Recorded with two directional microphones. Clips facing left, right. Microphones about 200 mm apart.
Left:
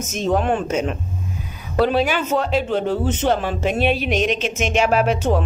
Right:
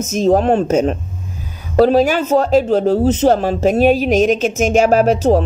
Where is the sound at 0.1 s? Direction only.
40° right (ahead or behind).